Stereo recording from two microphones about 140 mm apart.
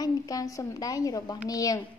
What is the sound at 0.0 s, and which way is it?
A woman's voice, 25° left (ahead or behind).